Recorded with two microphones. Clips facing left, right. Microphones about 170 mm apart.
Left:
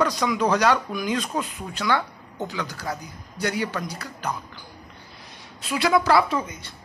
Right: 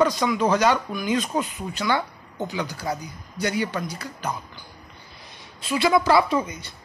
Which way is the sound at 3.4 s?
Centre (ahead or behind).